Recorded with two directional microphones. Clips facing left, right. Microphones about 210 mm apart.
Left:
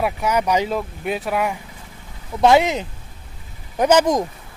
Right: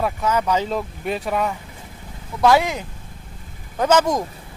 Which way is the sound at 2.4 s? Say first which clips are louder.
Left 2 dB; 20° left (ahead or behind).